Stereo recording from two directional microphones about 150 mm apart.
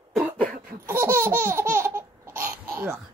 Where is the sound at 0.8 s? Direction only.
15° right (ahead or behind).